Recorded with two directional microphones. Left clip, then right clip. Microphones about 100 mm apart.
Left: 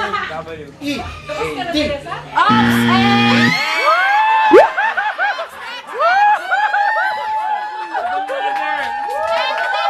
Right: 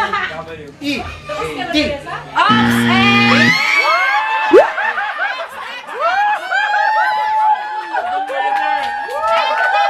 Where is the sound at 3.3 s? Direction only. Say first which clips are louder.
Right 3 dB; 20° right (ahead or behind).